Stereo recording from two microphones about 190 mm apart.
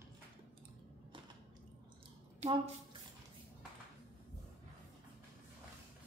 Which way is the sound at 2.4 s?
25° right (ahead or behind).